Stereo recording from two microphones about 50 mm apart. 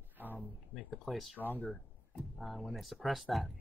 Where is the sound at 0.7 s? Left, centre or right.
Centre.